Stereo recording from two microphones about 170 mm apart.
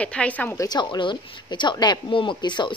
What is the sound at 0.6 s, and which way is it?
Speech, 25° left (ahead or behind).